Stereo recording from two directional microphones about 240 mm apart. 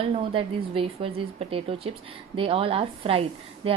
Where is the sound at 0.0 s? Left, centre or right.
Right.